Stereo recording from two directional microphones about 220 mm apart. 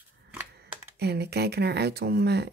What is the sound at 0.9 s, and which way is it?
Speech, 50° right (ahead or behind).